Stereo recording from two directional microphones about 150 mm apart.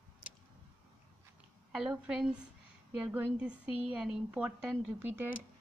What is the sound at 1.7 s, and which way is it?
A woman's voice, 5° right (ahead or behind).